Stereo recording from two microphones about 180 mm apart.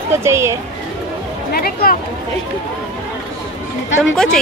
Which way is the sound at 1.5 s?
55° left (ahead or behind).